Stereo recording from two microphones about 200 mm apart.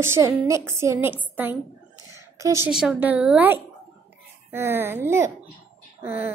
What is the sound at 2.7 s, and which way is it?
A woman's voice, 5° right (ahead or behind).